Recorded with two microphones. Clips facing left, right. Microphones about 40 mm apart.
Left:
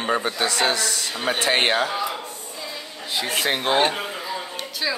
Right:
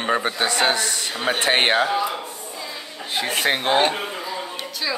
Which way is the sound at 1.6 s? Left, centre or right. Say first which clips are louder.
Right 2 dB; right.